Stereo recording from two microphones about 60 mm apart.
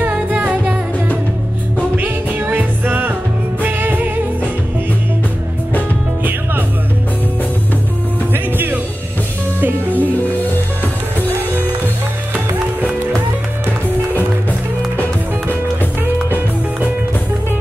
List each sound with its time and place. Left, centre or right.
0.1 s music: right
2.0 s music: right
8.3 s music: right